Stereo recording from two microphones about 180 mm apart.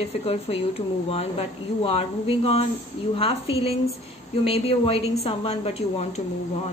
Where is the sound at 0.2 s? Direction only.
35° left (ahead or behind).